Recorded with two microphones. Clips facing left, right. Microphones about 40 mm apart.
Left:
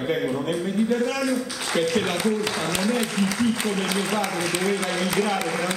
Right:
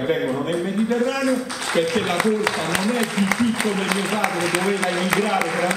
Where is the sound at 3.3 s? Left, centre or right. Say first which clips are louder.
Right 3 dB; right.